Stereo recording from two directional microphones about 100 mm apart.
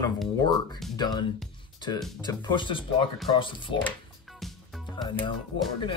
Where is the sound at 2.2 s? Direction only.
50° left (ahead or behind).